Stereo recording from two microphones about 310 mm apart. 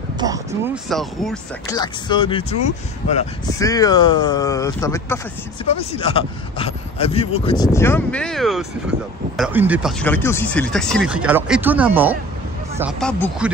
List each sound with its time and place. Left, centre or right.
0.2 s a sound: centre
0.8 s speech: centre
1.8 s speech: centre
3.5 s speech: centre